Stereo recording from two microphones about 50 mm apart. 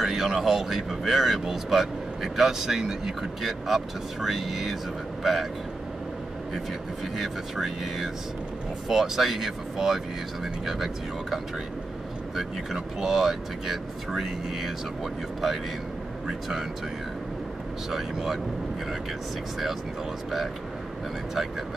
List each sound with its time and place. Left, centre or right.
0.0 s a man's voice: centre
7.2 s a man's voice: centre
12.7 s speech: centre
16.3 s speech: centre
17.9 s speech: centre